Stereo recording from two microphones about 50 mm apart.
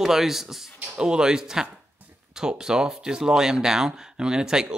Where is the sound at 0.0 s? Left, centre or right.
Centre.